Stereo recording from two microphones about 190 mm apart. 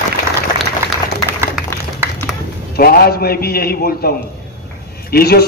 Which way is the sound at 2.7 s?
55° left (ahead or behind).